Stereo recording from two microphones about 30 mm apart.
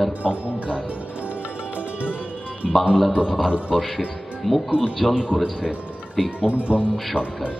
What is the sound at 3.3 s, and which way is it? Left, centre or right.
Speech, right.